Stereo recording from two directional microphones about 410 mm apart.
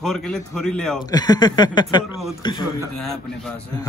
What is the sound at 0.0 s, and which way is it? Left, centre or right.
A man's voice, centre.